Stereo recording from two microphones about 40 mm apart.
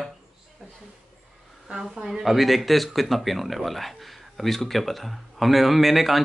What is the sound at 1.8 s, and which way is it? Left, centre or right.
Speech, centre.